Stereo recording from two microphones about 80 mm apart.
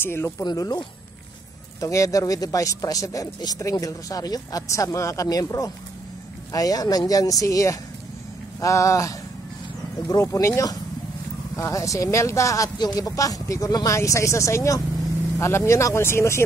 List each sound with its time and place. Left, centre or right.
0.0 s speech: left
0.4 s speech: left
1.8 s speech: left
10.2 s speech: left
12.7 s speech: left